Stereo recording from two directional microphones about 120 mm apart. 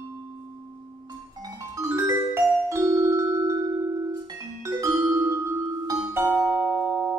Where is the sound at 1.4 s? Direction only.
25° right (ahead or behind).